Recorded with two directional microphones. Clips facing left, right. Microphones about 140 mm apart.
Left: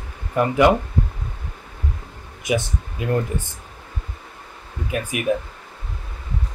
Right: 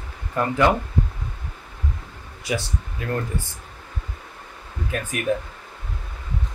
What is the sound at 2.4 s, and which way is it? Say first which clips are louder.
Speech: left 4 dB; 15° left (ahead or behind).